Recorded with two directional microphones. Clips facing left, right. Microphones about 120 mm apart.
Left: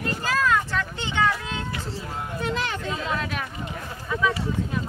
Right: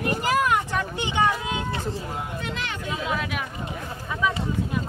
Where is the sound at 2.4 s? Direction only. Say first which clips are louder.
Left 4 dB; 35° left (ahead or behind).